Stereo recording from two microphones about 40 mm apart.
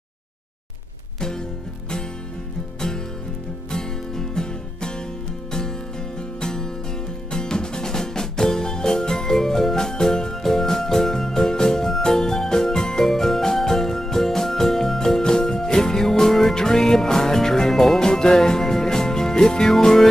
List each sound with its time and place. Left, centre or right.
3.7 s music: centre